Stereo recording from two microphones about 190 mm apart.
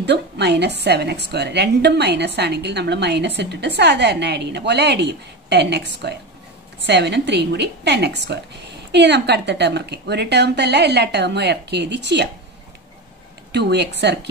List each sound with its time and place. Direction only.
0.0 s a woman's voice: 60° right (ahead or behind)
13.5 s a woman's voice: 65° right (ahead or behind)